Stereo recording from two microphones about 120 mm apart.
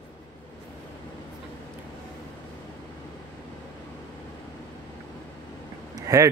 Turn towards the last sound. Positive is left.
turn(degrees=-30)  # may be behind; listen again after turning